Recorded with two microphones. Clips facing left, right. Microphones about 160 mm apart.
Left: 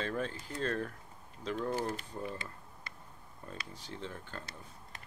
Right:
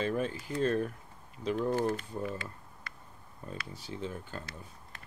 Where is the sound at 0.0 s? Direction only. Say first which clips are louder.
Right 4 dB; 10° right (ahead or behind).